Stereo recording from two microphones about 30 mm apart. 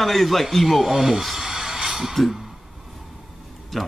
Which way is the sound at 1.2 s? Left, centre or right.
Centre.